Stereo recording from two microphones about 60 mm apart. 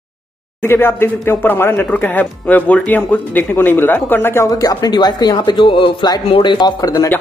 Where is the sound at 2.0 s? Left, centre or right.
Left.